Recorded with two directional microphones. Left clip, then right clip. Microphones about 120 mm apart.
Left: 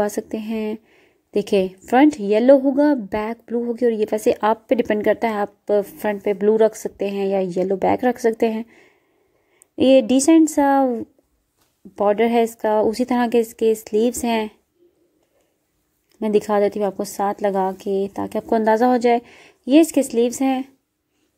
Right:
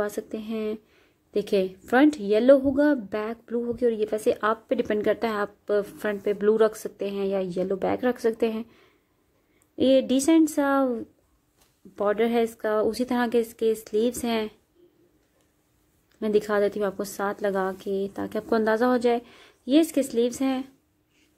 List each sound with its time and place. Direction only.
0.0 s a woman's voice: 40° left (ahead or behind)
4.8 s speech: 25° left (ahead or behind)
9.9 s speech: 35° left (ahead or behind)
16.2 s speech: 30° left (ahead or behind)